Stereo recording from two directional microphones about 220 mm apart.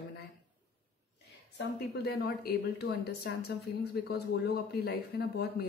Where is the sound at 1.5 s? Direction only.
50° left (ahead or behind).